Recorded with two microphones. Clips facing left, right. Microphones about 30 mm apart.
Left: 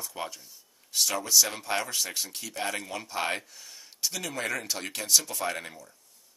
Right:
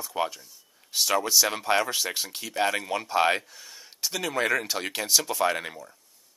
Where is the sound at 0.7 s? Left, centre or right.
Centre.